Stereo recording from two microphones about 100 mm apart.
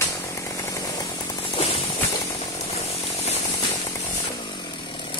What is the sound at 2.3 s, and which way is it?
Chainsaw, 90° left.